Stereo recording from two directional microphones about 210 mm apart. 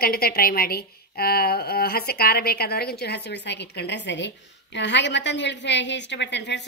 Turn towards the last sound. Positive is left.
turn(degrees=55)  # may be behind; listen again after turning